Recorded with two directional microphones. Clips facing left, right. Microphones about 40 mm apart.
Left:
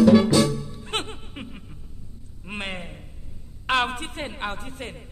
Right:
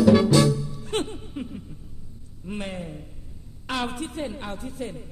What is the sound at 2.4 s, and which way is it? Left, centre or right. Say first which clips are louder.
A man's voice: even; left.